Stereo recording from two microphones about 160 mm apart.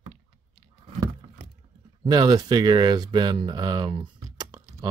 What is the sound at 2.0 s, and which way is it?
Speech, 25° right (ahead or behind).